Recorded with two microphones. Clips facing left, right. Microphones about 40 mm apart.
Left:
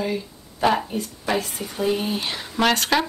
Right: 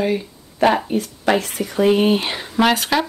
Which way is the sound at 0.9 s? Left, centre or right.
Right.